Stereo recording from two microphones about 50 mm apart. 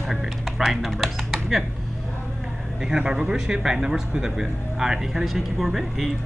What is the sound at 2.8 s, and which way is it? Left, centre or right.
Speech, centre.